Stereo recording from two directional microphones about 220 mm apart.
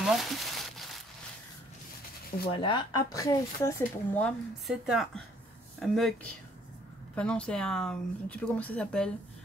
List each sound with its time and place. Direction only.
0.0 s crumpling: centre (ahead or behind)
2.5 s speech: 20° left (ahead or behind)
4.2 s speech: centre (ahead or behind)
7.2 s speech: 5° left (ahead or behind)